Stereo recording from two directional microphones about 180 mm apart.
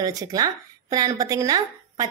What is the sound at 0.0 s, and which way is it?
A woman's voice, 20° right (ahead or behind).